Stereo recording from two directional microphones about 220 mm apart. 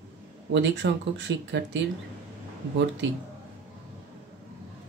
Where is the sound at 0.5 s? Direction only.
55° right (ahead or behind).